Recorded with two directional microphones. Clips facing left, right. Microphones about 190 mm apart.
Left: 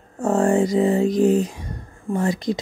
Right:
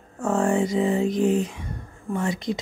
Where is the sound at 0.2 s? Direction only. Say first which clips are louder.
Left 4 dB; 35° left (ahead or behind).